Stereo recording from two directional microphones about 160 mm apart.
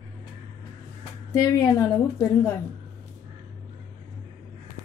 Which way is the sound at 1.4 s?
20° left (ahead or behind).